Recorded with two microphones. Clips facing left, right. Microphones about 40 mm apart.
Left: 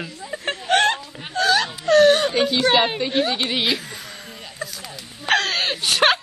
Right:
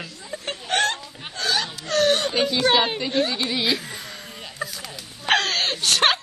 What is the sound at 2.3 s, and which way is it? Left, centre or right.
Speech, left.